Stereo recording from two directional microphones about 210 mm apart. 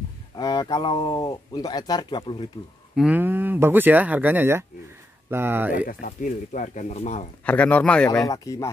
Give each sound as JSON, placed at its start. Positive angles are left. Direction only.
{"t": 0.4, "sound": "speech", "side_deg": 20}
{"t": 3.0, "sound": "speech", "side_deg": -10}
{"t": 5.9, "sound": "speech", "side_deg": 40}
{"t": 7.4, "sound": "speech", "side_deg": 5}
{"t": 8.3, "sound": "speech", "side_deg": 15}